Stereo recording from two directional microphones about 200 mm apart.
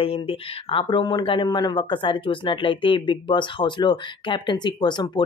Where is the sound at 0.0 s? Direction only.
30° left (ahead or behind).